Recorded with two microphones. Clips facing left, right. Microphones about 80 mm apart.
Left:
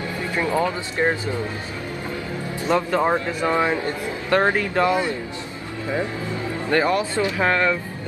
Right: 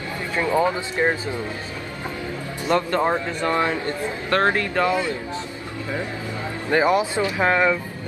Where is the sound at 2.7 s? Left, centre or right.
Centre; by 5.2 s left.